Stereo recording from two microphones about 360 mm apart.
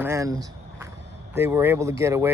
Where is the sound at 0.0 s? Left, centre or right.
Centre.